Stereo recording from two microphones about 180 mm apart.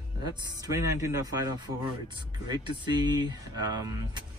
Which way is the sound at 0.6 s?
15° right (ahead or behind).